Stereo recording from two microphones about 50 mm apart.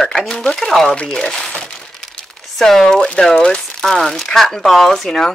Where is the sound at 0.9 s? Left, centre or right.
Centre.